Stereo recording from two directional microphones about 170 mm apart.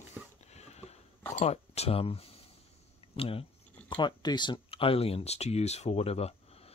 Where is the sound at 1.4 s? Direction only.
35° left (ahead or behind).